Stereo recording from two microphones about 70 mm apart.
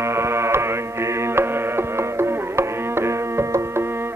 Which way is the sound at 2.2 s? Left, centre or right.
Right.